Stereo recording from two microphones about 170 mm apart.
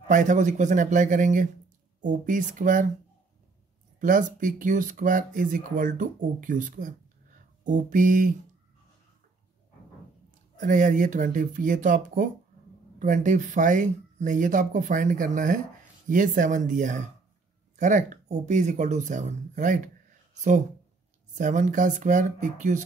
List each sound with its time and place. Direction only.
0.1 s speech: 45° right (ahead or behind)
4.0 s speech: 50° right (ahead or behind)
10.6 s speech: 50° right (ahead or behind)
21.4 s speech: 45° right (ahead or behind)